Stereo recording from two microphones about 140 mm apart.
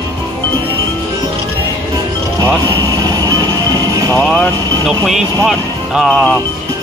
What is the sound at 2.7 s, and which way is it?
Vehicle, 30° right (ahead or behind).